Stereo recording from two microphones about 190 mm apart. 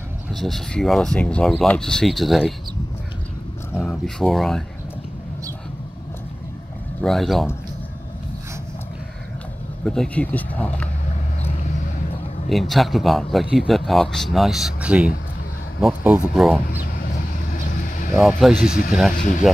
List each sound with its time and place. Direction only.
0.3 s speech: centre (ahead or behind)
3.7 s speech: 5° left (ahead or behind)
7.0 s speech: centre (ahead or behind)
9.8 s speech: 5° left (ahead or behind)
12.4 s speech: centre (ahead or behind)
16.7 s vehicle: 45° left (ahead or behind)
18.7 s speech: 45° left (ahead or behind)